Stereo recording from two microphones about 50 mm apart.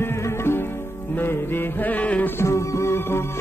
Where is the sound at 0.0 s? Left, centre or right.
Left.